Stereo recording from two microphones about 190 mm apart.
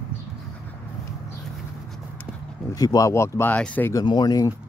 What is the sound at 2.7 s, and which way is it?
Speech, 20° left (ahead or behind).